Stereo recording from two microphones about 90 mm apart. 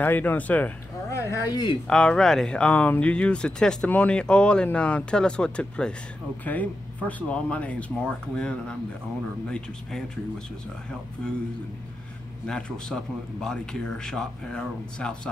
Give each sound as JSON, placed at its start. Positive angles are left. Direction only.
{"t": 0.0, "sound": "speech", "side_deg": 20}
{"t": 1.1, "sound": "speech", "side_deg": 35}
{"t": 1.9, "sound": "speech", "side_deg": 10}
{"t": 12.4, "sound": "speech", "side_deg": 10}